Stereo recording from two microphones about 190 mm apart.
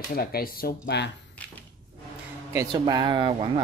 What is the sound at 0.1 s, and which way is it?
Speech, 50° left (ahead or behind).